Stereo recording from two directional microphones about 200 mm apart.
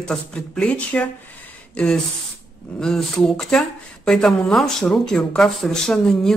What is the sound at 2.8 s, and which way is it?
Speech, centre (ahead or behind).